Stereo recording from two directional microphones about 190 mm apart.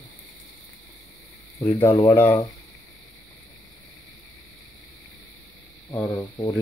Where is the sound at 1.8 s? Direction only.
15° left (ahead or behind).